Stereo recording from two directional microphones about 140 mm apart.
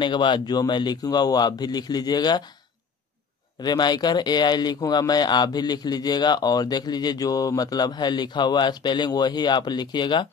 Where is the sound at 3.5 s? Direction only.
30° left (ahead or behind).